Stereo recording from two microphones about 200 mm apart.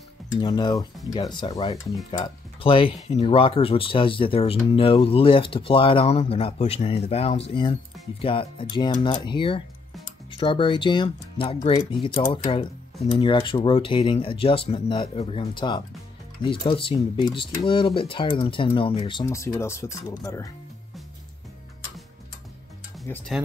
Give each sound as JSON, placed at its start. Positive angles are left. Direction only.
{"t": 0.4, "sound": "speech", "side_deg": 20}
{"t": 23.0, "sound": "speech", "side_deg": 10}